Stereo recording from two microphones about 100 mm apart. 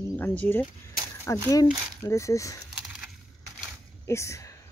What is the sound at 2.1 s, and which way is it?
Speech, 30° left (ahead or behind).